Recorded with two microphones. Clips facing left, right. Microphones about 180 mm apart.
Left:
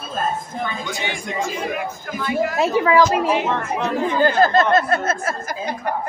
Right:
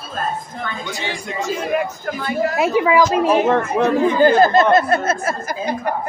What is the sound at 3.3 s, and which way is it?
Speech, 50° right (ahead or behind).